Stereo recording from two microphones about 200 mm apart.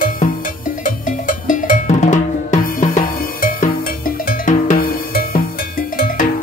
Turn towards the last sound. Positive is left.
turn(degrees=45)  # may be behind; listen again after turning